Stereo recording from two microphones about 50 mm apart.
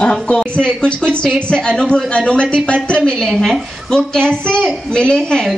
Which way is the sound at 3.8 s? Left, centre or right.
Centre.